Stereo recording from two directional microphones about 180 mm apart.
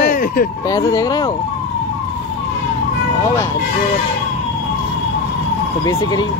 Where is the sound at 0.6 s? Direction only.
20° left (ahead or behind).